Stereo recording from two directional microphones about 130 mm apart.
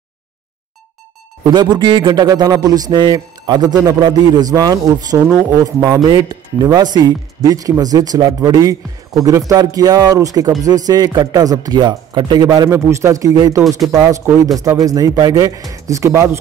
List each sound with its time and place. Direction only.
1.5 s a man's voice: 35° right (ahead or behind)